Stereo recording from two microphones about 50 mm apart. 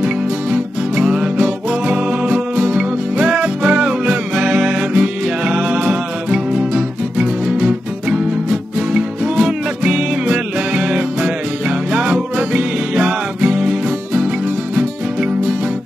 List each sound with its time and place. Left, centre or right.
0.0 s music: centre